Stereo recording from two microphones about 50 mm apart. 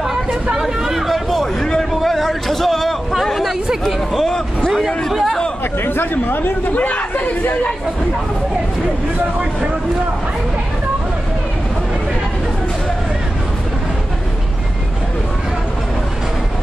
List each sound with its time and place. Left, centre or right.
0.0 s a sound: centre
3.2 s speech: centre
5.9 s speech: left